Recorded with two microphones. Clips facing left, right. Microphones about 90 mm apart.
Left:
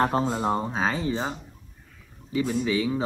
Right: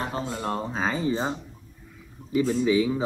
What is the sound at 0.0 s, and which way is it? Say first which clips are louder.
Speech: left 7 dB; 40° left (ahead or behind).